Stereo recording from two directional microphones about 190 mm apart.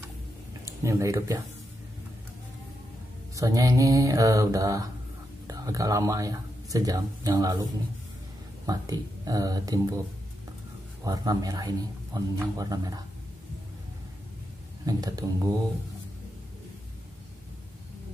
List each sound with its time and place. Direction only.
0.7 s speech: 15° right (ahead or behind)
3.3 s mantra: 20° right (ahead or behind)
5.5 s speech: 20° right (ahead or behind)
8.6 s a man's voice: 20° right (ahead or behind)
11.1 s a man's voice: 20° right (ahead or behind)
14.9 s a man's voice: 20° right (ahead or behind)